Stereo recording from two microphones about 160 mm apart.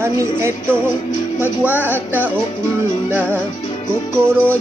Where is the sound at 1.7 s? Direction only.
15° left (ahead or behind).